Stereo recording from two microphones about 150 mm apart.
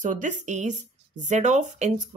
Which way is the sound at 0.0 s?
55° right (ahead or behind).